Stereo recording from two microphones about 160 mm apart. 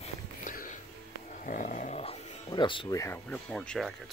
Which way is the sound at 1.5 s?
55° left (ahead or behind).